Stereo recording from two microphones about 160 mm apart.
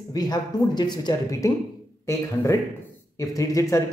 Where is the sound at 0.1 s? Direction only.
25° left (ahead or behind).